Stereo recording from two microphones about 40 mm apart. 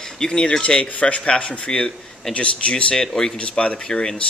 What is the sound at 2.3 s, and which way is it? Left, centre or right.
Speech, left.